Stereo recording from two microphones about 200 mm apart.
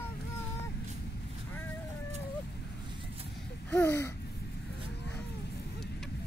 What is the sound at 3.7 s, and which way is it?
Babbling, 10° left (ahead or behind).